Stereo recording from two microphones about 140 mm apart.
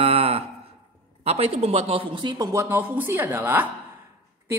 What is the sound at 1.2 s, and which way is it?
A woman's voice, 45° right (ahead or behind).